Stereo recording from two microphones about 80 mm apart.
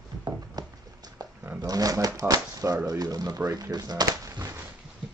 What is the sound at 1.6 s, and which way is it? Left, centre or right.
Speech, right.